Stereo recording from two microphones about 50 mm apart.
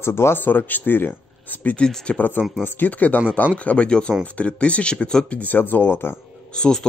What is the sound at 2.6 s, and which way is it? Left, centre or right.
Speech, left.